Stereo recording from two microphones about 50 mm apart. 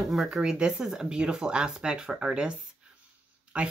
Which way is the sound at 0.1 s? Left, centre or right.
Centre.